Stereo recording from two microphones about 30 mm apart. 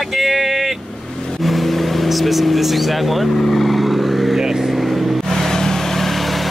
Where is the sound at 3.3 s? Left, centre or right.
Centre.